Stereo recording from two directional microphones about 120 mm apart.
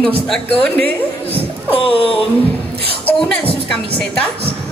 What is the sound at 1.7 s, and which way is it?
Speech, 50° left (ahead or behind).